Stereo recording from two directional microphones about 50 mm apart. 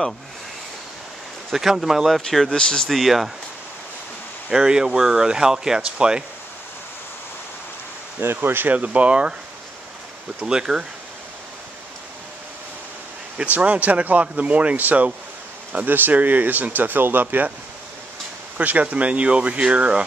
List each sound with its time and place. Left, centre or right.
1.5 s speech: centre
2.2 s speech: centre
2.9 s speech: centre
4.5 s speech: centre
8.2 s speech: right
8.7 s speech: right
10.4 s speech: centre
13.5 s speech: right
18.6 s speech: right